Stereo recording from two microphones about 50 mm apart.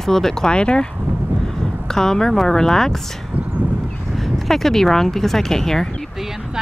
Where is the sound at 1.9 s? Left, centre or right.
Centre.